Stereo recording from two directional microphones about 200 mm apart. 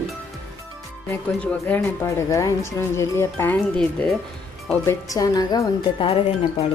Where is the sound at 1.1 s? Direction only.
10° left (ahead or behind).